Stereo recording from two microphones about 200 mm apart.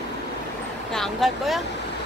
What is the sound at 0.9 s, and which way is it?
Vehicle, centre (ahead or behind).